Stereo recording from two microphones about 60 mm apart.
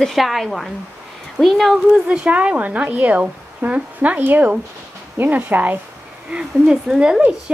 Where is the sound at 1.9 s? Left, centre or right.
Centre.